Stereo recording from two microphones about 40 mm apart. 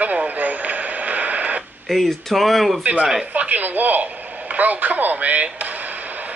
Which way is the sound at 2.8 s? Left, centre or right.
Right.